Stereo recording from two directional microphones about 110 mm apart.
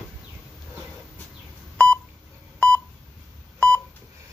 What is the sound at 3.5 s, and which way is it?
Telephone dialing, 15° left (ahead or behind).